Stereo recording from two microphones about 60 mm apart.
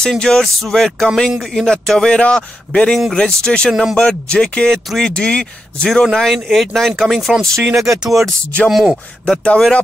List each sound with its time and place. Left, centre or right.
0.2 s speech: centre
6.1 s speech: centre
9.2 s speech: centre